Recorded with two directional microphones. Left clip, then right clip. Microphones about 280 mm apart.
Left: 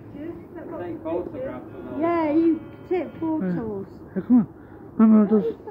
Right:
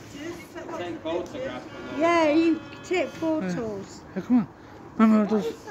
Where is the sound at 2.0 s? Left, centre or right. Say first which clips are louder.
Right 1 dB; left.